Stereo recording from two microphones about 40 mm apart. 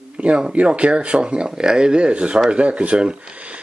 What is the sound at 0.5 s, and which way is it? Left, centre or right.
A man's voice, right.